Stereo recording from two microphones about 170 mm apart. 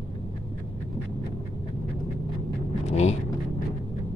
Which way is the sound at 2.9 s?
40° left (ahead or behind).